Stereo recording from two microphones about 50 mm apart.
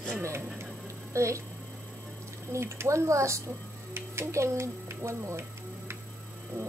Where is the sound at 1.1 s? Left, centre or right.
Right.